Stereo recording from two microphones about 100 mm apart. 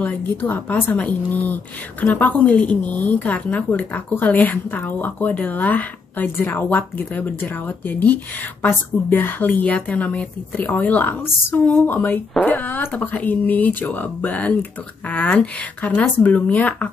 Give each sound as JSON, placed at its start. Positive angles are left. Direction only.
{"t": 0.5, "sound": "a woman's voice", "side_deg": 20}